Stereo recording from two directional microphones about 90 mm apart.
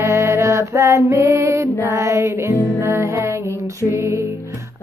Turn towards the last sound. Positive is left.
turn(degrees=-30)  # may be behind; listen again after turning